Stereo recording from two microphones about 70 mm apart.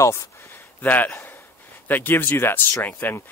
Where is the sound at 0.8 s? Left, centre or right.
Left.